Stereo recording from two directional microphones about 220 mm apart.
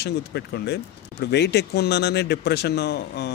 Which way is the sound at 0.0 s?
50° left (ahead or behind).